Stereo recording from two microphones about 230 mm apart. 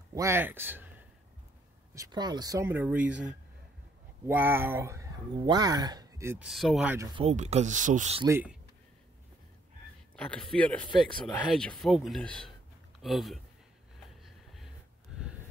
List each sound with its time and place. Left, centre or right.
0.1 s a man's voice: centre
4.3 s speech: centre
7.2 s speech: right
8.3 s speech: centre
10.1 s speech: centre
14.2 s a sound: centre